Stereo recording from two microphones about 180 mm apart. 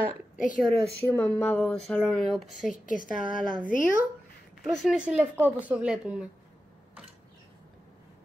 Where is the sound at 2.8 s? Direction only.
45° left (ahead or behind).